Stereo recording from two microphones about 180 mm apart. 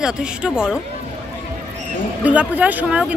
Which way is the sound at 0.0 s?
5° right (ahead or behind).